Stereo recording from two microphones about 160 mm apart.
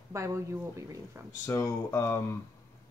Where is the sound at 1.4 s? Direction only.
15° left (ahead or behind).